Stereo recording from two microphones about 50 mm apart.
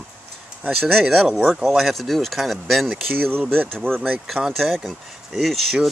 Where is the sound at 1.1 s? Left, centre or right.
Centre.